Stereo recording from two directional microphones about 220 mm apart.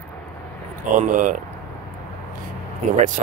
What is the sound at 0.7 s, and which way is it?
Speech, 35° right (ahead or behind).